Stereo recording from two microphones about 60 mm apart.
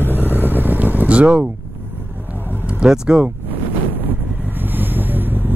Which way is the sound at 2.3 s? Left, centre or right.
Right.